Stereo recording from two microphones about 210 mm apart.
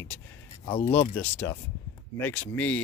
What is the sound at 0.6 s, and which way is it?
Speech, 25° left (ahead or behind).